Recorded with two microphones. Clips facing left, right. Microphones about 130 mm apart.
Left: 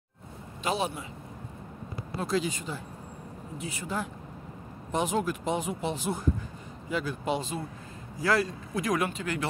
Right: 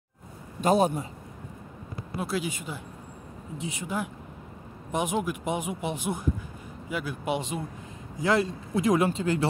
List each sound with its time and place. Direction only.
0.6 s a man's voice: 45° right (ahead or behind)
2.1 s a man's voice: 10° right (ahead or behind); by 9.5 s 30° right (ahead or behind)